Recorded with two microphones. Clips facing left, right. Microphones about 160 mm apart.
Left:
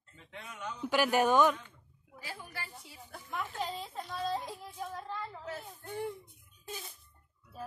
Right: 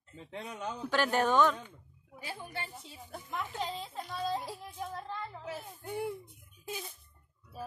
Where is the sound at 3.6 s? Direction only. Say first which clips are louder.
Even; centre (ahead or behind).